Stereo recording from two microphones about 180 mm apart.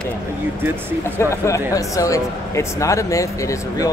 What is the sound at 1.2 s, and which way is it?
Speech, 15° left (ahead or behind).